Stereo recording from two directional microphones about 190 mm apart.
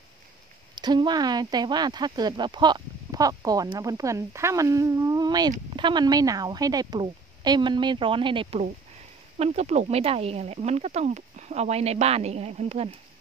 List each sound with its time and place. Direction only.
0.7 s speech: 25° right (ahead or behind)